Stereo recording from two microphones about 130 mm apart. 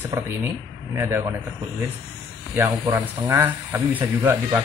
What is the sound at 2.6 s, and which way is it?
Speech, 25° right (ahead or behind).